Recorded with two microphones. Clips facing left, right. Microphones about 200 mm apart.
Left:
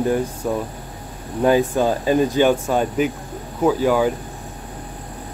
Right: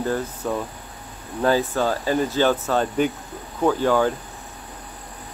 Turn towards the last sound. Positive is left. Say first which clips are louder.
# left 2 dB
turn(degrees=10)  # may be behind; listen again after turning